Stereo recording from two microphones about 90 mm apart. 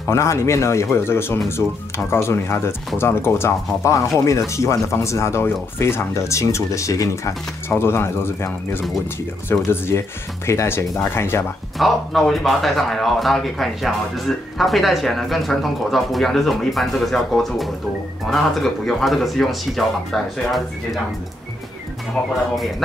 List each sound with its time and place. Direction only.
0.0 s speech: 30° left (ahead or behind)
7.7 s speech: 25° left (ahead or behind)
9.7 s speech: 30° left (ahead or behind)
11.8 s speech: centre (ahead or behind)